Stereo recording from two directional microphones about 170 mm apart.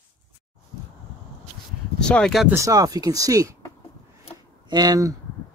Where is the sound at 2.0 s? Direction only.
5° left (ahead or behind).